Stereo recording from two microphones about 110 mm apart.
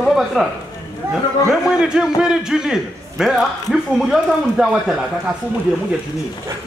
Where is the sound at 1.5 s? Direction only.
5° right (ahead or behind).